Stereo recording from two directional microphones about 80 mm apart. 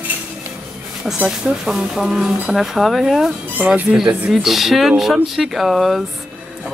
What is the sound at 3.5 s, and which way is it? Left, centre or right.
Speech, centre.